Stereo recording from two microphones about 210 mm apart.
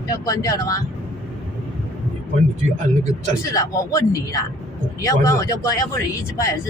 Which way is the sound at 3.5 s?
15° left (ahead or behind).